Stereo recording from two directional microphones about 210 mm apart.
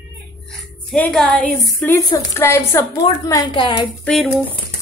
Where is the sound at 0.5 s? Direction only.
5° left (ahead or behind); by 3.9 s 25° left (ahead or behind).